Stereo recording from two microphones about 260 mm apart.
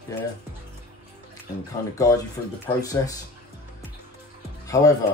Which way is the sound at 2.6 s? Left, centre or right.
Centre.